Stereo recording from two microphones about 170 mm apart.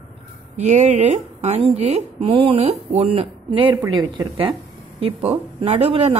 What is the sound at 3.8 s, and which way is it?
Speech, 20° right (ahead or behind).